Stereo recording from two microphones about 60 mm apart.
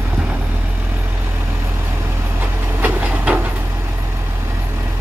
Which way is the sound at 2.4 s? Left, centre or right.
Right.